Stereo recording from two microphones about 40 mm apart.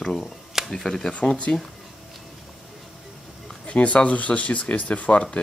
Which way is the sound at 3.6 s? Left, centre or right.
Left.